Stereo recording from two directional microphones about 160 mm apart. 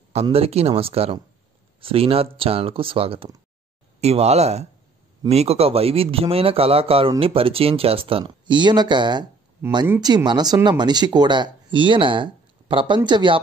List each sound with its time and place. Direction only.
0.1 s speech: 40° right (ahead or behind)